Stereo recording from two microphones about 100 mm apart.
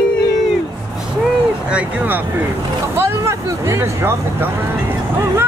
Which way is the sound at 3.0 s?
25° right (ahead or behind).